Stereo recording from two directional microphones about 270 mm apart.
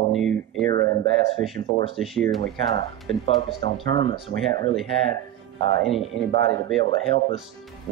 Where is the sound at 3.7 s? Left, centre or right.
Left.